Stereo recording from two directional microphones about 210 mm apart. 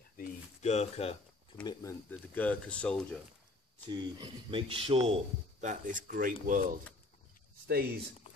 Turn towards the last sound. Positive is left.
turn(degrees=-50)  # may be behind; listen again after turning